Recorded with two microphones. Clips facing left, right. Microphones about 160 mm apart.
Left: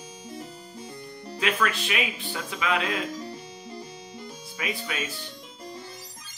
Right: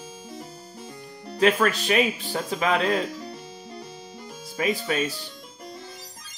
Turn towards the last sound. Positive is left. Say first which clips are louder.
# right 8 dB
turn(degrees=-40)  # may be behind; listen again after turning